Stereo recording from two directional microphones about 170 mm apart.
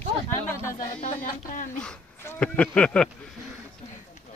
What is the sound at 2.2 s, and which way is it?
Speech, 5° left (ahead or behind).